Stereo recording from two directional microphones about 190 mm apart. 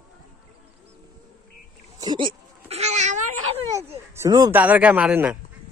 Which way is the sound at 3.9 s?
15° right (ahead or behind).